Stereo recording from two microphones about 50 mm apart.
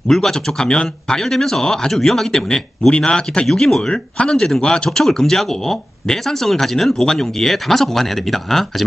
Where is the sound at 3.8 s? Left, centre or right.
Centre.